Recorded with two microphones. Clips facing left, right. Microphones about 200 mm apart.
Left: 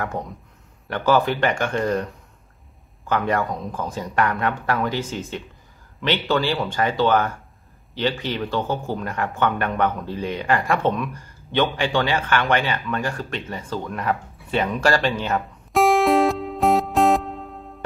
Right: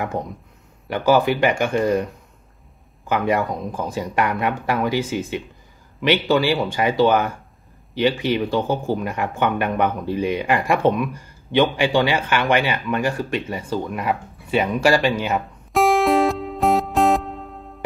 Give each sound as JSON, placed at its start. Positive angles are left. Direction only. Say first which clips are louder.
{"t": 0.8, "sound": "speech", "louder": "right 2 dB", "side_deg": -10}
{"t": 3.1, "sound": "speech", "louder": "right 2 dB", "side_deg": -10}